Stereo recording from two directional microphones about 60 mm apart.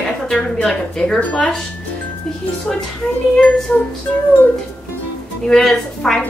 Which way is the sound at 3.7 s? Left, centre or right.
Left.